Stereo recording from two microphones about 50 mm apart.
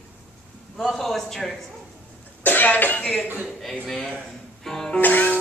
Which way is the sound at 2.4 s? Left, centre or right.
Left.